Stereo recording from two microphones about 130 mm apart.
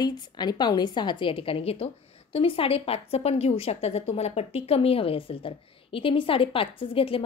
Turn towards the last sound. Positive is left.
turn(degrees=45)  # may be behind; listen again after turning